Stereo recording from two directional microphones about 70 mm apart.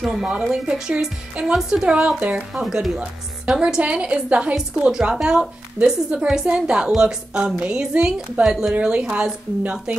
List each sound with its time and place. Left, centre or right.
0.0 s a woman's voice: centre
2.5 s a woman's voice: centre
8.7 s a woman's voice: centre